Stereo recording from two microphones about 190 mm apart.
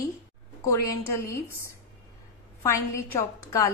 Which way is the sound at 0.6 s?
15° left (ahead or behind).